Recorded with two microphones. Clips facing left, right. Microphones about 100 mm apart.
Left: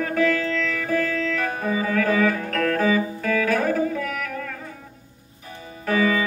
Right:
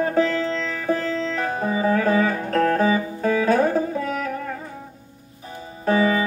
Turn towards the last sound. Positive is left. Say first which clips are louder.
# right 2 dB
turn(degrees=-30)  # may be behind; listen again after turning